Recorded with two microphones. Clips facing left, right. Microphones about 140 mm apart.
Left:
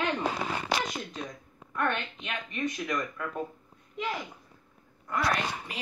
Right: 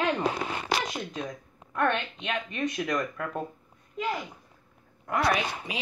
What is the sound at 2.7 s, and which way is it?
Speech, 55° right (ahead or behind).